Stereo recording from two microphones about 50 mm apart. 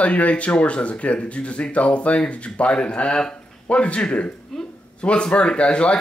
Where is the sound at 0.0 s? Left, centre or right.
Left.